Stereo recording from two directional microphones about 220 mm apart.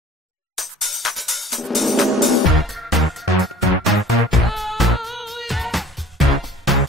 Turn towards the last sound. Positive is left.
turn(degrees=0)  # may be behind; listen again after turning